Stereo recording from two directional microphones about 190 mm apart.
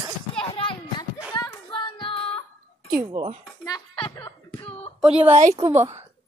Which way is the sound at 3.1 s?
35° right (ahead or behind).